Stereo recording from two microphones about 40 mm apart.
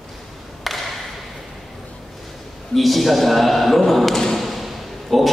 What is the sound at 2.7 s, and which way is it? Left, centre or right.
Speech, centre.